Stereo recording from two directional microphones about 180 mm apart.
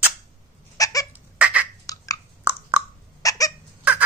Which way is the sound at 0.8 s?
20° left (ahead or behind).